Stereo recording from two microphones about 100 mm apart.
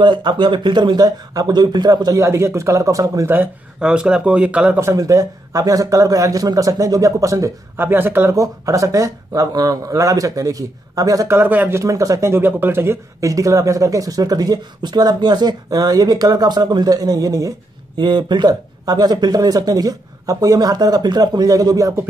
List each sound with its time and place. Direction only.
0.0 s speech: 50° right (ahead or behind)
2.2 s speech: 30° right (ahead or behind)
3.8 s speech: 10° right (ahead or behind)
4.7 s speech: 30° right (ahead or behind)
7.7 s speech: 20° right (ahead or behind)
8.4 s speech: 30° right (ahead or behind)
11.3 s speech: 20° right (ahead or behind)
11.8 s speech: 35° right (ahead or behind)
18.0 s speech: 50° right (ahead or behind)